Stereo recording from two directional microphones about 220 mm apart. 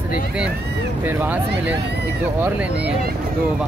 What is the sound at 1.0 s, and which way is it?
Speech, 10° right (ahead or behind).